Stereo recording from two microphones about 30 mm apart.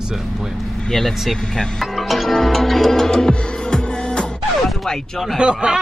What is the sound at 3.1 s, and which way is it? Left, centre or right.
Music, left.